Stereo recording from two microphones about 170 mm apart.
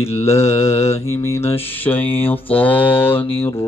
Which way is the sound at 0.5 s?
15° left (ahead or behind).